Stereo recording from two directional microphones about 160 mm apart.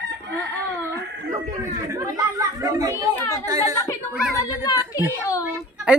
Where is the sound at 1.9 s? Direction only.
20° right (ahead or behind).